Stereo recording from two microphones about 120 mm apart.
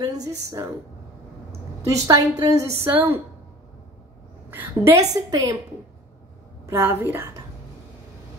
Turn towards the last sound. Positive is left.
turn(degrees=-20)  # may be behind; listen again after turning